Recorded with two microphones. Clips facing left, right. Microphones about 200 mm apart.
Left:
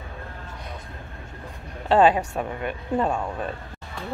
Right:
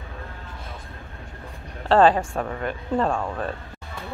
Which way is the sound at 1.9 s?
10° left (ahead or behind).